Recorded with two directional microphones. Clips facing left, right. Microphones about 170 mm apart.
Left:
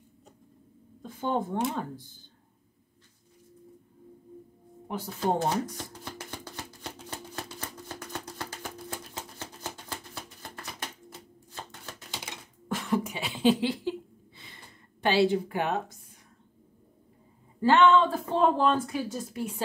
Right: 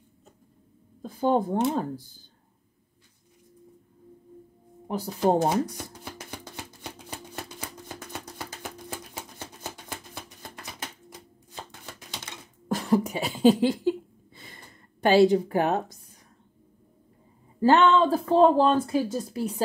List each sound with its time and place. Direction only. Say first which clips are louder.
1.0 s speech: right 6 dB; 35° right (ahead or behind)
4.8 s speech: right 4 dB; 40° right (ahead or behind)
5.4 s shuffling cards: right 4 dB; 15° right (ahead or behind)
12.6 s a sound: right 5 dB; 35° right (ahead or behind)
17.6 s speech: right 1 dB; 40° right (ahead or behind)